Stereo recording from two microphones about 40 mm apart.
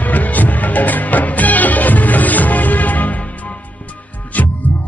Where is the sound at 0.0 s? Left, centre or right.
Left.